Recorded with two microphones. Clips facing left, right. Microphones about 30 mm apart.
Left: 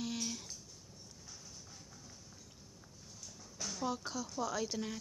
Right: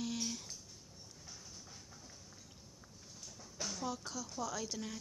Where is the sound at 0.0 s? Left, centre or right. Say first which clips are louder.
Even; centre.